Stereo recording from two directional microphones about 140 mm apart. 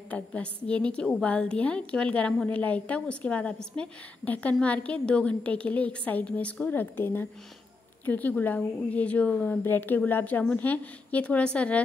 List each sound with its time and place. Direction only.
0.1 s a woman's voice: 10° left (ahead or behind)